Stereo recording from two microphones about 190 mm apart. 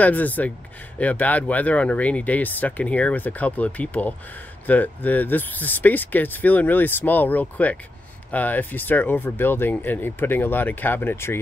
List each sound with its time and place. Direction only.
0.0 s speech: 10° left (ahead or behind)